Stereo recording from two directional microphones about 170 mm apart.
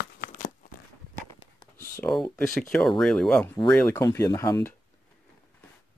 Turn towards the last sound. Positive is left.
turn(degrees=15)  # may be behind; listen again after turning